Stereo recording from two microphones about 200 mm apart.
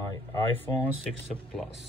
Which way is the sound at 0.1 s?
20° left (ahead or behind).